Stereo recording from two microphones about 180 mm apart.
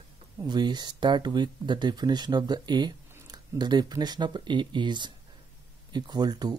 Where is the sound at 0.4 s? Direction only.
25° right (ahead or behind).